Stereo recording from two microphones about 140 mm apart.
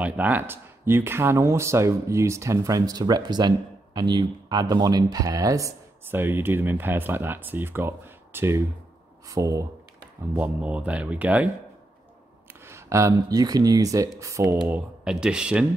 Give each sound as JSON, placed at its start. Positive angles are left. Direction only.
{"t": 0.0, "sound": "speech", "side_deg": -10}
{"t": 10.3, "sound": "speech", "side_deg": -10}
{"t": 12.6, "sound": "speech", "side_deg": -20}
{"t": 15.0, "sound": "speech", "side_deg": -5}